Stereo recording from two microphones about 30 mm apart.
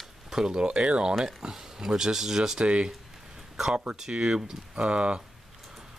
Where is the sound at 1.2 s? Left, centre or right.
Centre.